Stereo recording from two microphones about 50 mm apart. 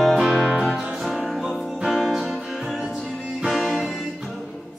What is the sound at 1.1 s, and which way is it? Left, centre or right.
Music, centre.